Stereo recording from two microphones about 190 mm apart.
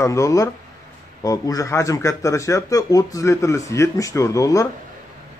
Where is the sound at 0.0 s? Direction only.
15° left (ahead or behind).